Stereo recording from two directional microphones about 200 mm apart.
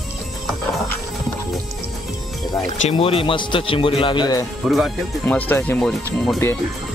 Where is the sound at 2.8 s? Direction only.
25° left (ahead or behind).